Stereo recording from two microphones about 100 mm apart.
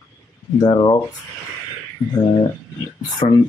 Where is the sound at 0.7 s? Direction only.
50° left (ahead or behind).